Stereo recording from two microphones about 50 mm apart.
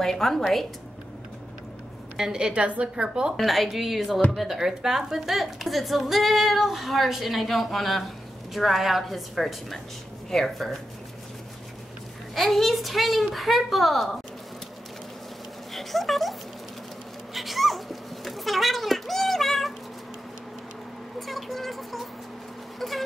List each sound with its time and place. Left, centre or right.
0.0 s a woman's voice: centre
2.1 s a woman's voice: centre
3.3 s a woman's voice: centre
12.4 s a woman's voice: centre
15.7 s speech: centre
17.3 s a sound: centre
21.3 s speech: centre
22.8 s music: centre